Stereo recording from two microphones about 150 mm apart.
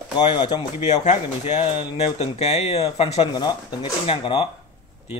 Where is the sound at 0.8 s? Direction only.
50° left (ahead or behind).